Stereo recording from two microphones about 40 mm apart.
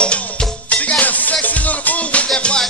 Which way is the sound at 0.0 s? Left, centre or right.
Left.